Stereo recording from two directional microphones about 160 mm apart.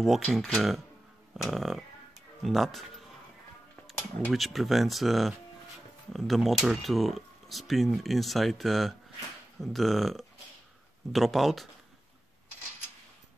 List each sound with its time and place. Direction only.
0.0 s speech: centre (ahead or behind)
3.8 s speech: centre (ahead or behind)